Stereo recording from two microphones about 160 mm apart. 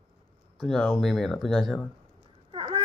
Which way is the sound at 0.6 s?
Centre (ahead or behind).